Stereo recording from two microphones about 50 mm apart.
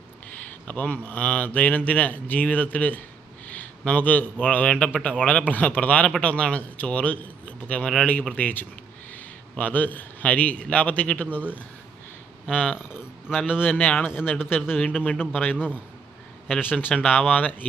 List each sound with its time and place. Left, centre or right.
0.5 s speech: left
4.6 s a man's voice: centre
13.6 s speech: left
14.0 s a man's voice: left
14.8 s a man's voice: left
15.5 s a man's voice: right
16.4 s a man's voice: left
16.9 s a man's voice: left
17.3 s speech: left